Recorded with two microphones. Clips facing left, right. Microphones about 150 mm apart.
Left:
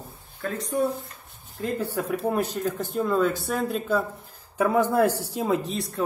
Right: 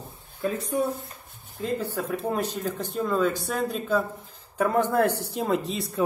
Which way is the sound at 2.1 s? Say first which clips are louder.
Left 3 dB; 5° left (ahead or behind).